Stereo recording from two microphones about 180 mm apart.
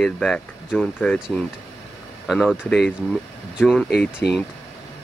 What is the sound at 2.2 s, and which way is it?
Speech, centre (ahead or behind).